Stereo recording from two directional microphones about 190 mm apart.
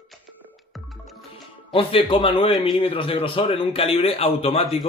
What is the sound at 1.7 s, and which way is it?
Speech, 30° left (ahead or behind).